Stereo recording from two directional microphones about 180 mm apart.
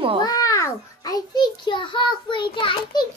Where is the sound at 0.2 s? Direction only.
20° left (ahead or behind).